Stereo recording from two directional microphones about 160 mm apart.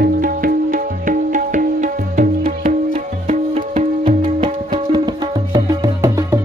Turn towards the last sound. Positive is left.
turn(degrees=-20)  # may be behind; listen again after turning